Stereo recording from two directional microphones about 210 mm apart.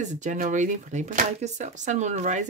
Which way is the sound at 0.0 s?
35° right (ahead or behind).